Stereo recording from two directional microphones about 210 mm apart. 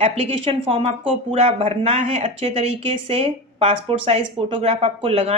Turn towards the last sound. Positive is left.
turn(degrees=-30)  # may be behind; listen again after turning